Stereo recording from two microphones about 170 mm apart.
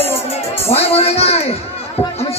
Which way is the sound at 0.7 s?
35° left (ahead or behind).